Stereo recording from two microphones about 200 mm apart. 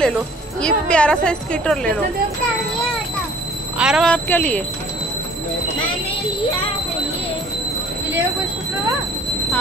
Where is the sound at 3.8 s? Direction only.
Centre (ahead or behind).